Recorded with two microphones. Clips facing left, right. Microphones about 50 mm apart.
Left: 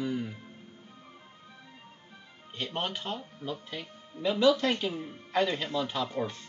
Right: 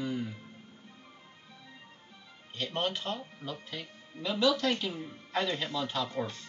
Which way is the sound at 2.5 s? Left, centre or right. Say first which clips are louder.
Right 1 dB; centre.